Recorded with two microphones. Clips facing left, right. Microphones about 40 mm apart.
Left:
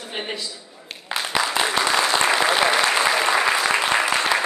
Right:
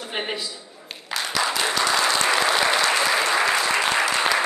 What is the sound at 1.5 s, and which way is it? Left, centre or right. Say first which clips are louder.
Applause: left 2 dB; left.